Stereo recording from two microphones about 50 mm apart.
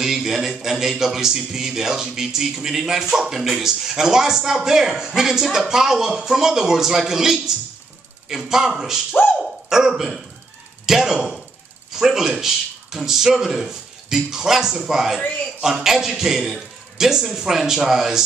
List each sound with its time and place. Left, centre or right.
0.0 s a man's voice: centre
15.1 s a man's voice: left
15.6 s a man's voice: centre